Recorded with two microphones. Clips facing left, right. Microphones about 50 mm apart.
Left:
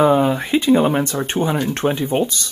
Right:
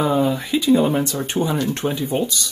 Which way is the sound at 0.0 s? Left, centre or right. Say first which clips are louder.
Left 4 dB; left.